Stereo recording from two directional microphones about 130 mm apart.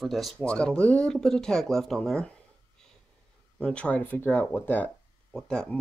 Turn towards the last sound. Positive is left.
turn(degrees=5)  # may be behind; listen again after turning